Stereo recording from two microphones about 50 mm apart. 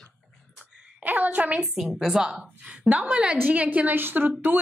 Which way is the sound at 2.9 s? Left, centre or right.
Right.